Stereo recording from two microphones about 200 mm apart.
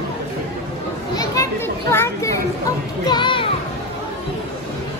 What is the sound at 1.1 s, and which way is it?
Children playing, 15° left (ahead or behind).